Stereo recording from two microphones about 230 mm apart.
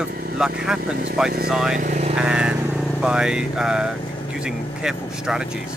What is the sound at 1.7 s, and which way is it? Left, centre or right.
Speech, right.